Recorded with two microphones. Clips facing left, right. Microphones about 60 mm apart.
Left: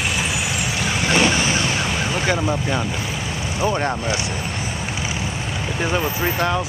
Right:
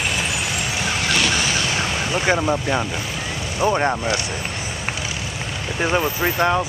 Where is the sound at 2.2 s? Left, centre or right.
Centre.